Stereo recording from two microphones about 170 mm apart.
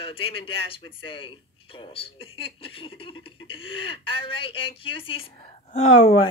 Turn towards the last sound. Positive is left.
turn(degrees=35)  # may be behind; listen again after turning